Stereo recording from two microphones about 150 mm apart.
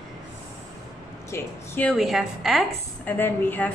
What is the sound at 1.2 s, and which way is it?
Speech, 15° left (ahead or behind).